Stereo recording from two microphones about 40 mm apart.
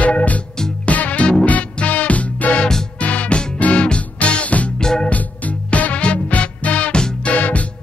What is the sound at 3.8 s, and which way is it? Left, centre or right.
Music, left.